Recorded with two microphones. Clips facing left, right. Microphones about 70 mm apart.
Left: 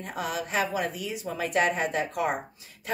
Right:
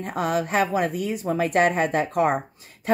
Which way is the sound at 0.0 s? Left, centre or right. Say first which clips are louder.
Right 7 dB; right.